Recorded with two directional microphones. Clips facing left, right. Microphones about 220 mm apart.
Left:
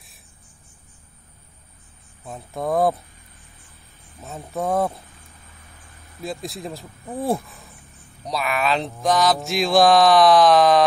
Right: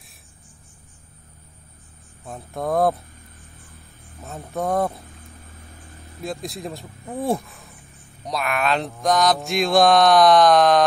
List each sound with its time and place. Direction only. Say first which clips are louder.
2.2 s mantra: even; centre (ahead or behind)
4.2 s mantra: even; centre (ahead or behind)
6.2 s mantra: even; centre (ahead or behind)